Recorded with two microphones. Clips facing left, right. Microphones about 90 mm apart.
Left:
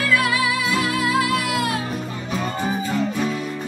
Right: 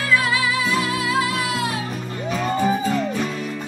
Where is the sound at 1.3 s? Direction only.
50° left (ahead or behind).